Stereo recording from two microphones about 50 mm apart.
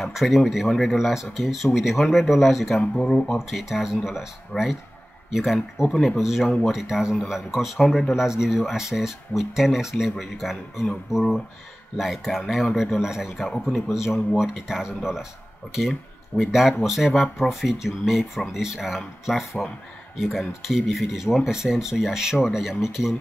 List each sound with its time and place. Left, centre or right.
0.0 s speech: centre
2.8 s speech: centre
3.3 s speech: centre
16.3 s speech: centre